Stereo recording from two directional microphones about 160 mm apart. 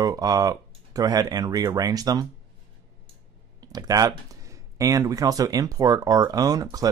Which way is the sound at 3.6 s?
25° right (ahead or behind).